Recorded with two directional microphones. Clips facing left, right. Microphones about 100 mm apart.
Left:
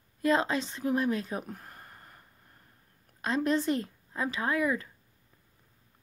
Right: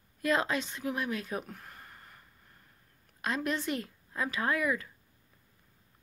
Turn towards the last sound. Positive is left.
turn(degrees=25)  # may be behind; listen again after turning